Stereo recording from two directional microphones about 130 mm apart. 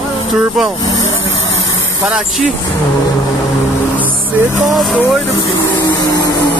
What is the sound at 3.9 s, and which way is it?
Vehicle, 15° left (ahead or behind).